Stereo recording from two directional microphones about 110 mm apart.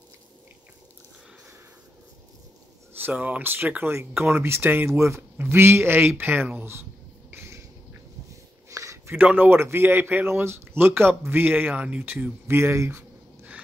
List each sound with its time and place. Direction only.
3.0 s speech: 15° right (ahead or behind)
7.2 s a sound: 25° right (ahead or behind)
8.6 s a man's voice: 30° right (ahead or behind)